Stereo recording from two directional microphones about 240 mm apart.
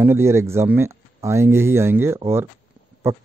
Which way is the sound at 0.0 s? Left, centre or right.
Centre.